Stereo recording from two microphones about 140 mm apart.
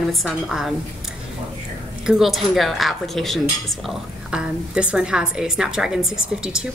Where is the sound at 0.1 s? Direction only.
Centre (ahead or behind).